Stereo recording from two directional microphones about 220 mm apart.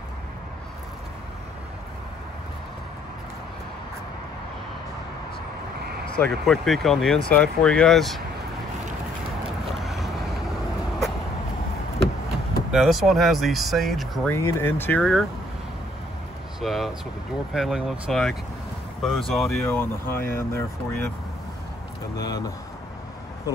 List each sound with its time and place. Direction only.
6.1 s speech: 5° left (ahead or behind)
9.8 s boat: centre (ahead or behind)
12.7 s speech: centre (ahead or behind)
14.3 s speech: 10° left (ahead or behind)
16.6 s speech: centre (ahead or behind)
22.2 s speech: 15° left (ahead or behind)